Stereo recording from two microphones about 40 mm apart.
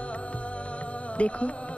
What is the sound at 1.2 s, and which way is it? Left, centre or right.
Speech, left.